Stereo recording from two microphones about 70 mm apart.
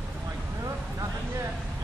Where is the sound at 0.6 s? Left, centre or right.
Right.